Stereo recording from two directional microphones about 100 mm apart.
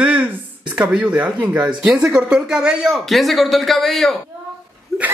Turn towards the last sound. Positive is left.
turn(degrees=0)  # may be behind; listen again after turning